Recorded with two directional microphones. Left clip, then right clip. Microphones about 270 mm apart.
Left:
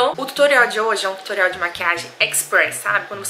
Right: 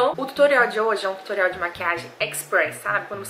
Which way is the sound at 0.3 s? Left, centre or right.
Centre.